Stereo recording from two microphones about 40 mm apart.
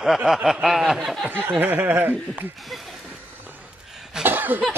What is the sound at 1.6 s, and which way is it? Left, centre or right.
Speech, right.